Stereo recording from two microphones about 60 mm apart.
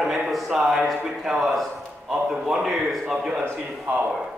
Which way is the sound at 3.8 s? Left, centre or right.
Right.